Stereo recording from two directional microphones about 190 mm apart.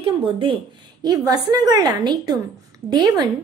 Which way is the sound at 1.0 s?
20° right (ahead or behind).